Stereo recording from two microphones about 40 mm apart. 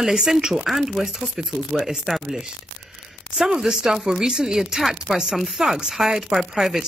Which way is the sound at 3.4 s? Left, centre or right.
Centre.